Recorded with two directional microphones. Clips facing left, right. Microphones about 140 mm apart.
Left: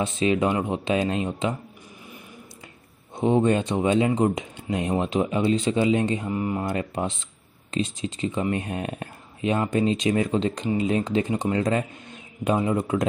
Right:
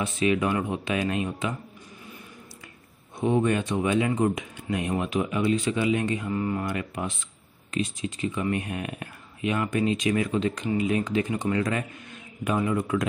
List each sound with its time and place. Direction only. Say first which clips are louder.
0.0 s speech: left 2 dB; 25° left (ahead or behind)
3.2 s speech: left 3 dB; 25° left (ahead or behind)